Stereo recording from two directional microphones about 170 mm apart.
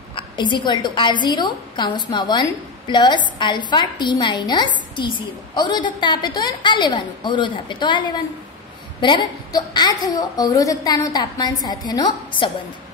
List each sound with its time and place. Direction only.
0.1 s a woman's voice: 25° left (ahead or behind)